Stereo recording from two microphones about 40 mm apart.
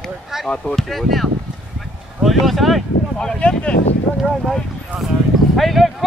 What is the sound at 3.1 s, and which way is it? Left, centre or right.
Speech, left.